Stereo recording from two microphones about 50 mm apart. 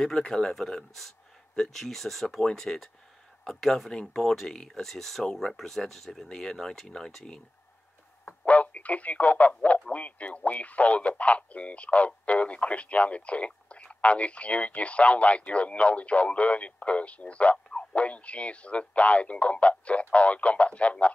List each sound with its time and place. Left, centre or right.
0.3 s speech: centre
8.3 s speech: left